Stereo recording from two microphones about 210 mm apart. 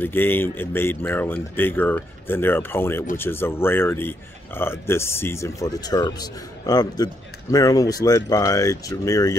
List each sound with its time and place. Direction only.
0.0 s a man's voice: 10° left (ahead or behind)